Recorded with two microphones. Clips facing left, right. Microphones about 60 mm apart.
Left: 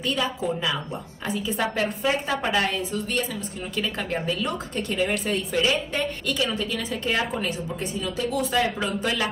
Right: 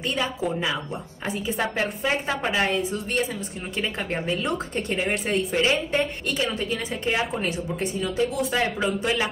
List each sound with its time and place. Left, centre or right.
0.0 s a woman's voice: right